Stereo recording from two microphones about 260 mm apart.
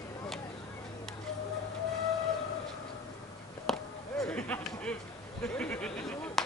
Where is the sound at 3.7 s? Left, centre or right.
Centre.